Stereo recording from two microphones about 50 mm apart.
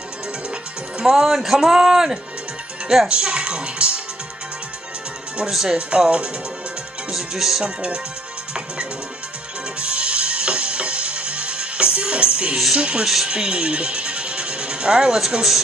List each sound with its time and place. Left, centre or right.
0.9 s speech: centre
5.4 s speech: centre
5.7 s speech: centre
7.1 s speech: centre
7.6 s speech: centre
9.8 s music: right
12.7 s speech: right
13.0 s speech: centre
13.3 s music: centre